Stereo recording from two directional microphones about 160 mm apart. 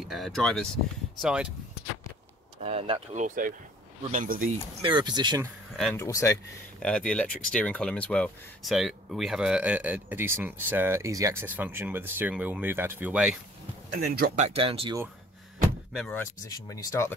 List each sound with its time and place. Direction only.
0.0 s speech: centre (ahead or behind)
2.6 s speech: 40° right (ahead or behind); by 4.5 s 55° right (ahead or behind)
4.8 s speech: 25° right (ahead or behind)
5.9 s speech: 20° left (ahead or behind)
6.8 s speech: 5° left (ahead or behind)
13.9 s speech: 70° right (ahead or behind)
14.3 s speech: 40° right (ahead or behind)
15.9 s speech: 5° left (ahead or behind)
16.4 s speech: 20° left (ahead or behind)